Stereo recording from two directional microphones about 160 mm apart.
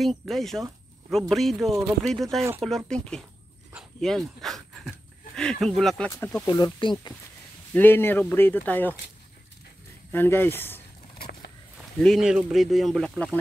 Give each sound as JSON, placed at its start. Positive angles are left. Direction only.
{"t": 0.0, "sound": "speech", "side_deg": 0}
{"t": 6.4, "sound": "speech", "side_deg": 20}
{"t": 10.1, "sound": "speech", "side_deg": 15}
{"t": 12.0, "sound": "speech", "side_deg": 0}